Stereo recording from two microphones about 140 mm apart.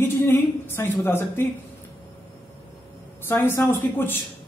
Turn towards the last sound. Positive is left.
turn(degrees=15)  # may be behind; listen again after turning